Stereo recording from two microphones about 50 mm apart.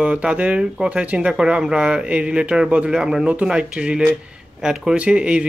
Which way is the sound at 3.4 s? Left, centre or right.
Right.